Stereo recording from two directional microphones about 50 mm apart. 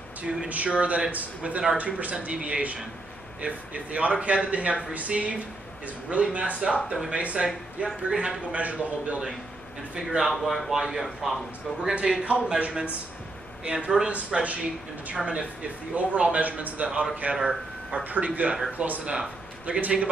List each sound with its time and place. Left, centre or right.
0.5 s a man's voice: right
8.5 s speech: right
9.9 s speech: centre
11.9 s speech: right
13.7 s speech: centre
18.0 s a man's voice: right